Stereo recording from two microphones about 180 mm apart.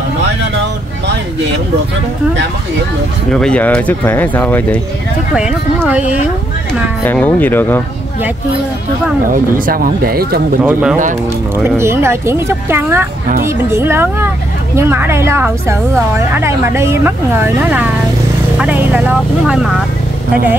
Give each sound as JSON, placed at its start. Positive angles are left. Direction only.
{"t": 3.3, "sound": "speech", "side_deg": 5}
{"t": 5.3, "sound": "a woman's voice", "side_deg": 0}
{"t": 6.7, "sound": "speech", "side_deg": 10}
{"t": 9.3, "sound": "speech", "side_deg": -50}
{"t": 10.6, "sound": "a woman's voice", "side_deg": -5}